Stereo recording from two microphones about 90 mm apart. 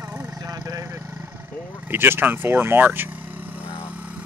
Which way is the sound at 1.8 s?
25° right (ahead or behind).